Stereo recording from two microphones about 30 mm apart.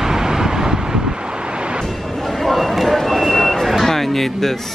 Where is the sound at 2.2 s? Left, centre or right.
Centre.